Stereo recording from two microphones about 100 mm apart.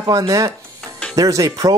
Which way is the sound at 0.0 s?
40° right (ahead or behind).